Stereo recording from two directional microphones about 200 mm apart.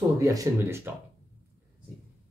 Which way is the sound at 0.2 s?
15° right (ahead or behind).